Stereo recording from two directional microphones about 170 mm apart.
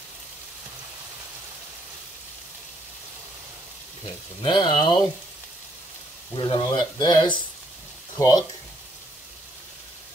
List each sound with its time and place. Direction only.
4.4 s speech: 25° left (ahead or behind)
6.3 s speech: 30° left (ahead or behind)